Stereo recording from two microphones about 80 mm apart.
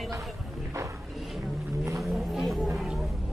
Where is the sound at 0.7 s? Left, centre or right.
Right.